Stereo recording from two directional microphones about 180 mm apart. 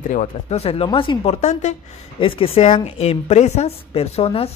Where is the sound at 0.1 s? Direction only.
40° left (ahead or behind).